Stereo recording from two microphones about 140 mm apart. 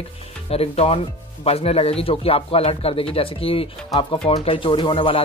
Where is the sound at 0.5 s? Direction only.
45° left (ahead or behind).